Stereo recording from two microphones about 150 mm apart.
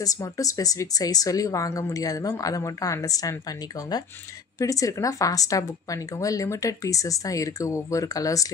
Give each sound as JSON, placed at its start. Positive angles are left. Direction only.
{"t": 0.0, "sound": "speech", "side_deg": 25}